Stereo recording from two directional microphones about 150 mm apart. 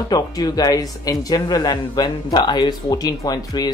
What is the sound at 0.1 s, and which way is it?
Speech, 25° left (ahead or behind).